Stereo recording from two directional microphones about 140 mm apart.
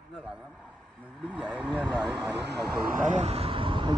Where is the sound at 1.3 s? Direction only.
5° right (ahead or behind).